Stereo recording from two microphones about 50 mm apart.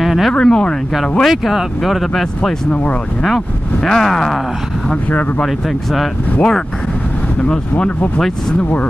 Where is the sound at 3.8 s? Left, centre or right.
Centre.